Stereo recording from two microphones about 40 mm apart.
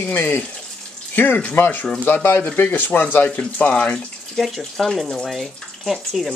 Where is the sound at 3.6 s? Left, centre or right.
Left.